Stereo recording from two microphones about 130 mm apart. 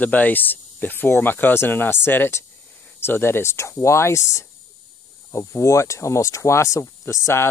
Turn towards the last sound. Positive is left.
turn(degrees=25)  # may be behind; listen again after turning